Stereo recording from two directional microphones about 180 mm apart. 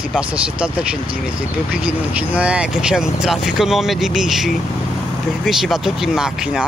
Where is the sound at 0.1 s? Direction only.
5° right (ahead or behind).